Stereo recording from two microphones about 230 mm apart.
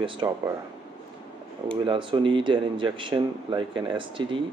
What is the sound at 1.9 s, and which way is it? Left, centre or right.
Speech, right.